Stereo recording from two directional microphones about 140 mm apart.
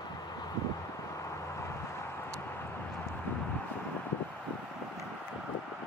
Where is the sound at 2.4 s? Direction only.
15° left (ahead or behind).